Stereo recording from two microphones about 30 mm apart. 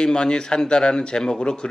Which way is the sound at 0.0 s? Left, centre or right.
Left.